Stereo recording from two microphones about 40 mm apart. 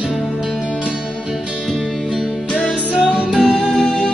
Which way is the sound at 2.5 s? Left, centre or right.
Left.